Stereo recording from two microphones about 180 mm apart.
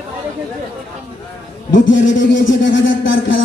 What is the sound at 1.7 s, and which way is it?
Speech, 90° left.